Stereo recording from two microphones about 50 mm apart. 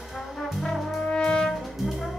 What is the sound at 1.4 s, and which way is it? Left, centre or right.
Brass instrument, centre.